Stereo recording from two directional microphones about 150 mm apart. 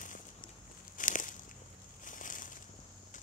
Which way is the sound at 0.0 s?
60° left (ahead or behind).